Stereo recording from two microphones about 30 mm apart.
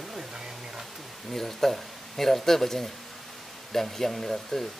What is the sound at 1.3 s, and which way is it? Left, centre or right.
Speech, centre.